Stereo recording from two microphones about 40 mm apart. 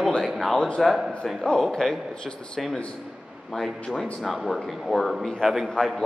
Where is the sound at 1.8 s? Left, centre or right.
Centre.